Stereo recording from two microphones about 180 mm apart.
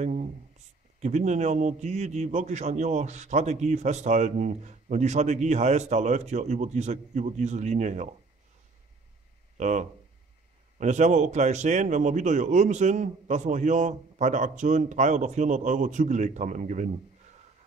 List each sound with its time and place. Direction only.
0.0 s a sound: 40° right (ahead or behind)
0.9 s a man's voice: 40° right (ahead or behind)
9.6 s a man's voice: 45° right (ahead or behind)